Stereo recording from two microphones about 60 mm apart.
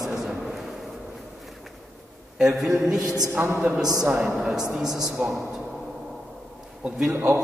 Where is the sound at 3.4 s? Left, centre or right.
Right.